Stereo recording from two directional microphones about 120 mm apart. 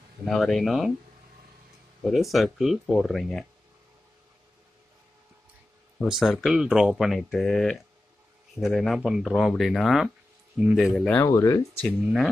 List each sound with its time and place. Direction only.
0.2 s speech: centre (ahead or behind)
2.0 s speech: centre (ahead or behind)
5.9 s speech: centre (ahead or behind)
11.1 s speech: 25° left (ahead or behind)